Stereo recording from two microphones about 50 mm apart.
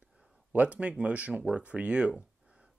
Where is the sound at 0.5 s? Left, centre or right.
Right.